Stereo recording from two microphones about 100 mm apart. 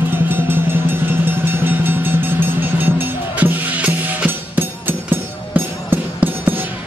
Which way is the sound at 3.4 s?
15° right (ahead or behind).